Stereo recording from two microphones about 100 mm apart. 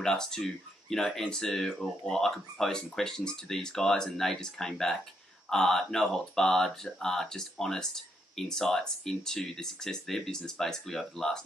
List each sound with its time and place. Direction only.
0.0 s speech: 5° left (ahead or behind)